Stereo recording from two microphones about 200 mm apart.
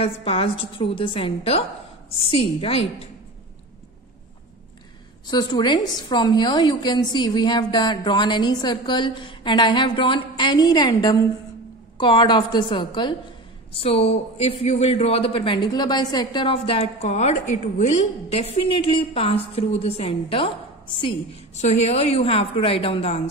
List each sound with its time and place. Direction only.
0.0 s speech: 30° left (ahead or behind)
5.3 s speech: 20° left (ahead or behind)